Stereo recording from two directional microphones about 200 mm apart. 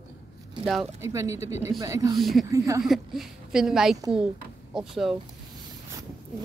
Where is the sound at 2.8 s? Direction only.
Centre (ahead or behind).